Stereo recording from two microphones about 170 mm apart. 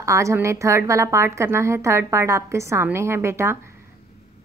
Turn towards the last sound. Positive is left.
turn(degrees=-15)  # may be behind; listen again after turning